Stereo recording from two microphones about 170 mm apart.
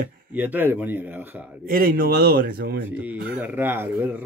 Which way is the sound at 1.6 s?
60° right (ahead or behind).